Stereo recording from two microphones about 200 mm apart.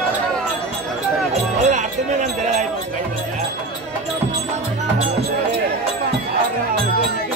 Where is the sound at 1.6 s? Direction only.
35° right (ahead or behind).